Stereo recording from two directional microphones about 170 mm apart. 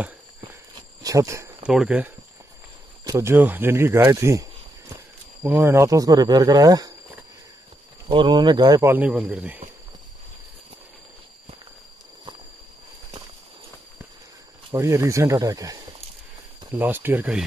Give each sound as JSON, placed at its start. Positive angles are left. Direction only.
{"t": 0.5, "sound": "a sound", "side_deg": -20}
{"t": 1.6, "sound": "a man's voice", "side_deg": -5}
{"t": 3.0, "sound": "speech", "side_deg": -20}
{"t": 8.1, "sound": "speech", "side_deg": -25}
{"t": 8.9, "sound": "a man's voice", "side_deg": -10}
{"t": 14.7, "sound": "a man's voice", "side_deg": -15}